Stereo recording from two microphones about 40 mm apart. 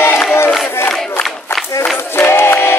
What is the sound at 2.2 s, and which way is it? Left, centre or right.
Music, left.